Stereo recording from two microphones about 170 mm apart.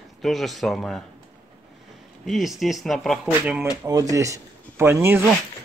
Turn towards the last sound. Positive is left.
turn(degrees=-15)  # may be behind; listen again after turning